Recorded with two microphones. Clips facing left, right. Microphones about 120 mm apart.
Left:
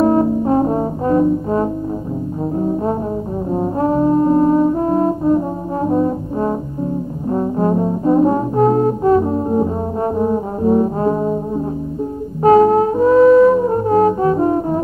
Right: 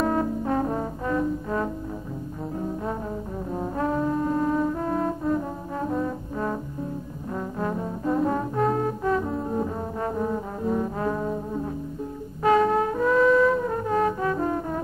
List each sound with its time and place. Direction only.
0.0 s brass instrument: 30° left (ahead or behind)
12.4 s music: 35° left (ahead or behind)